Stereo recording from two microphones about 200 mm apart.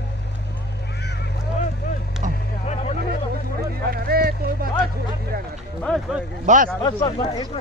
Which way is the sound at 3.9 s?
50° right (ahead or behind).